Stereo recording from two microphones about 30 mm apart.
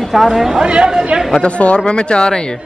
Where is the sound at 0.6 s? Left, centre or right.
Right.